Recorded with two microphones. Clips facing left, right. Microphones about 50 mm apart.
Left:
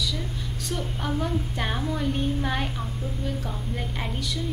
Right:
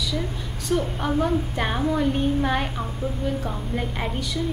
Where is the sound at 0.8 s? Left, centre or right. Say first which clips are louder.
Right 5 dB; centre.